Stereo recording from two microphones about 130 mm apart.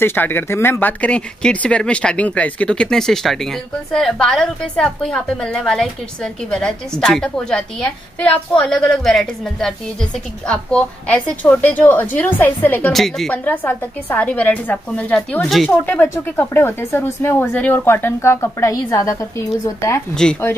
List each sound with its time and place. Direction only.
0.0 s speech: 15° left (ahead or behind)
12.9 s a woman's voice: centre (ahead or behind)
13.3 s a woman's voice: 15° left (ahead or behind)
15.8 s speech: 15° left (ahead or behind)